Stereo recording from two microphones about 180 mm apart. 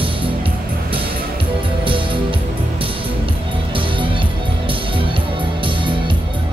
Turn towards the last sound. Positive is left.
turn(degrees=-30)  # may be behind; listen again after turning